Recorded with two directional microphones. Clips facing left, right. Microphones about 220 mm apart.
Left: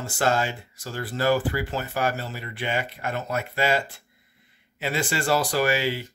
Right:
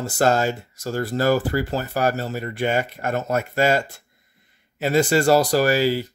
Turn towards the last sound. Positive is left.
turn(degrees=-40)  # may be behind; listen again after turning